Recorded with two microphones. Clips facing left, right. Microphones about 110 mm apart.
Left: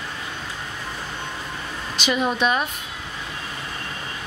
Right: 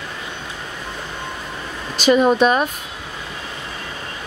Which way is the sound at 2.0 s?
40° right (ahead or behind).